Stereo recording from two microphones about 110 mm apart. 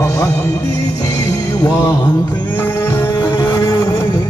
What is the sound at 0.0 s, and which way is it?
Music, 30° left (ahead or behind).